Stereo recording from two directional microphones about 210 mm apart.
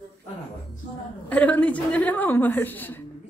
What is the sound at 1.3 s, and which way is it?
A woman's voice, 5° left (ahead or behind).